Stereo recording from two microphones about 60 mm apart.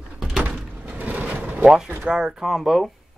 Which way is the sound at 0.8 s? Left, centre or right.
Right.